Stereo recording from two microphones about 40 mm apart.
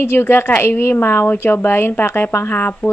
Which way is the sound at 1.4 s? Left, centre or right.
Left.